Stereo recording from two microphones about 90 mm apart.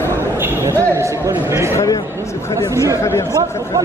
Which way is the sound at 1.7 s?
40° left (ahead or behind).